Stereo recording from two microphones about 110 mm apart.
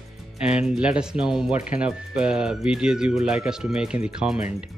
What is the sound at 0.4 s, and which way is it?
Speech, 10° right (ahead or behind).